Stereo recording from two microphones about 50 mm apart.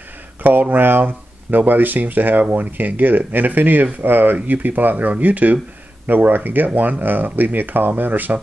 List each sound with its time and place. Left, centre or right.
0.4 s speech: right